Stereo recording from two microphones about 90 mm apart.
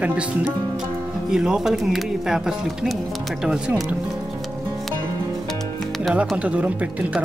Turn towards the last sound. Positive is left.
turn(degrees=-15)  # may be behind; listen again after turning